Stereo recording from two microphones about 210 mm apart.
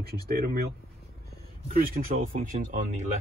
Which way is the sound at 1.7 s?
40° right (ahead or behind).